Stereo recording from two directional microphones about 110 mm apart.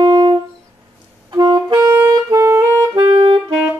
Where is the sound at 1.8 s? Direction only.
25° right (ahead or behind).